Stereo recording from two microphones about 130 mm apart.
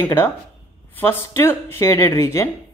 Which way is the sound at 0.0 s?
15° left (ahead or behind).